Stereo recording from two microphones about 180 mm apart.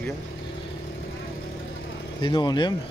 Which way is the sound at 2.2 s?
25° left (ahead or behind).